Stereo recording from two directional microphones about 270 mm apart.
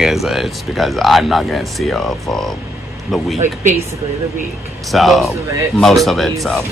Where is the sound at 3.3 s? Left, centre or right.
Right.